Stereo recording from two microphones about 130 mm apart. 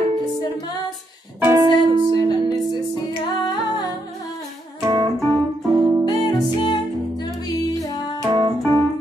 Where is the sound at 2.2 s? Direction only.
35° left (ahead or behind).